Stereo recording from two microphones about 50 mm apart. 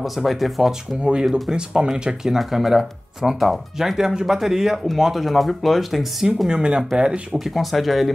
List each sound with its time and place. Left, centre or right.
0.0 s speech: centre
0.7 s speech: centre
6.5 s speech: centre
7.3 s speech: centre